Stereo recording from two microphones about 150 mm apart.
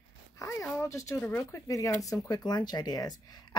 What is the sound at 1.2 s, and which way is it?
Speech, 15° left (ahead or behind).